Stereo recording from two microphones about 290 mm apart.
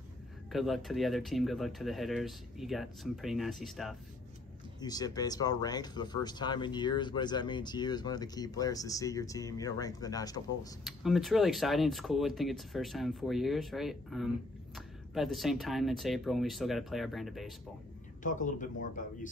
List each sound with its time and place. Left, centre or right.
0.5 s speech: centre
4.7 s speech: centre
10.8 s speech: centre
18.2 s speech: left